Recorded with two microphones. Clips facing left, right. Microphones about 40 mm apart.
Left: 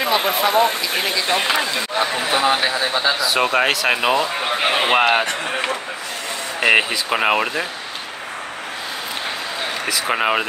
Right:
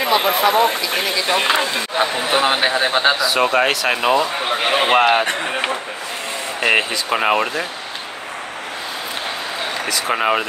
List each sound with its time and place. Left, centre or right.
0.0 s speech: centre
1.6 s speech: right
3.2 s speech: centre
6.6 s speech: centre
9.8 s speech: centre